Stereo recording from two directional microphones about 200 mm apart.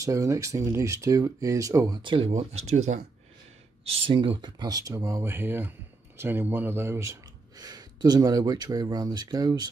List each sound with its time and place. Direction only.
0.0 s speech: 15° right (ahead or behind)